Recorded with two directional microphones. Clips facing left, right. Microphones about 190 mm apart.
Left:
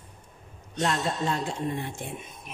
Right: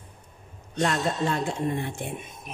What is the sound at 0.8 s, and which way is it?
Speech, 60° right (ahead or behind).